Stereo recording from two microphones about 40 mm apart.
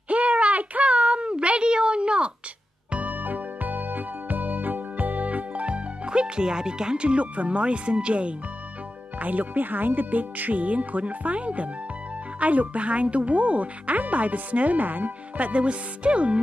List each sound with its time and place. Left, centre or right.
0.1 s a sound: right
3.1 s music: right
9.2 s speech: right